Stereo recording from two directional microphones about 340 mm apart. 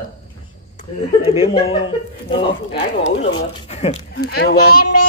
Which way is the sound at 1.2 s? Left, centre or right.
Centre.